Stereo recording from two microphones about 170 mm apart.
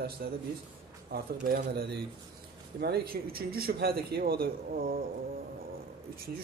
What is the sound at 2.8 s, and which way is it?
Speech, 65° right (ahead or behind).